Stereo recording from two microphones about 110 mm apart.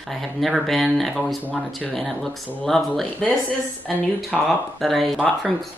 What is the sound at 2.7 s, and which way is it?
Speech, 5° left (ahead or behind).